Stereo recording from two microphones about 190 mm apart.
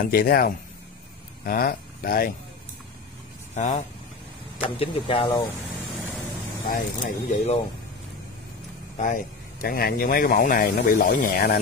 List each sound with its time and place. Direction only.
0.0 s speech: 50° left (ahead or behind)
3.5 s speech: 40° left (ahead or behind)
4.6 s speech: 30° left (ahead or behind)
6.7 s speech: 40° left (ahead or behind)
8.9 s speech: 45° left (ahead or behind)